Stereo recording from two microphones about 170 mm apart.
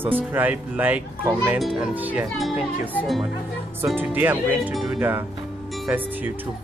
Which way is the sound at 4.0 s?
10° right (ahead or behind).